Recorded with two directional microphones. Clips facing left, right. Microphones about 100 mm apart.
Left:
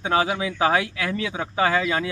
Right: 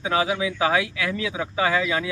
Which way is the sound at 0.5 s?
40° left (ahead or behind).